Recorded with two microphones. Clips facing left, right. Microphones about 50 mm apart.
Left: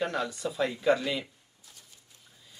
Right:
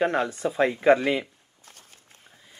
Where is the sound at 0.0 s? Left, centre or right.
Right.